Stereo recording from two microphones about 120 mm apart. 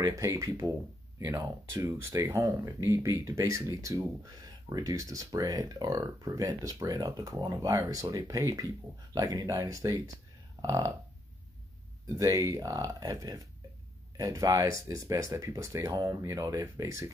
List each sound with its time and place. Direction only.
0.0 s speech: 30° right (ahead or behind)
10.6 s burping: 30° right (ahead or behind)
12.2 s speech: 30° right (ahead or behind)